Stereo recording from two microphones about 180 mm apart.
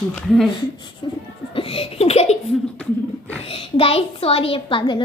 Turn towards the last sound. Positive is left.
turn(degrees=25)  # may be behind; listen again after turning